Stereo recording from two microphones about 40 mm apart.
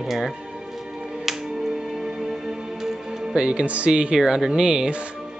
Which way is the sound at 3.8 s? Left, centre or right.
Right.